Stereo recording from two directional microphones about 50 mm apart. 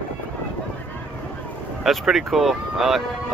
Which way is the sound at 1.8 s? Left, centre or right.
Centre.